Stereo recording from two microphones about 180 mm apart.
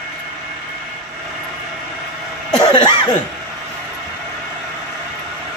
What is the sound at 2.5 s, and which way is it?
Cough, 25° left (ahead or behind).